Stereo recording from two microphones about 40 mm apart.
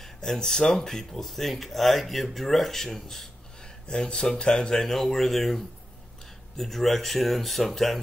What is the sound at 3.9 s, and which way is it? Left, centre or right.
Speech, left.